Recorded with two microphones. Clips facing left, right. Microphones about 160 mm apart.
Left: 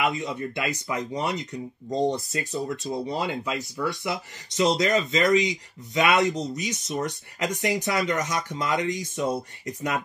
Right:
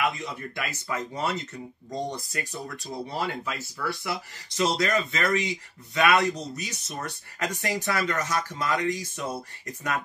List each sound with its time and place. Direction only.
0.0 s speech: 20° left (ahead or behind)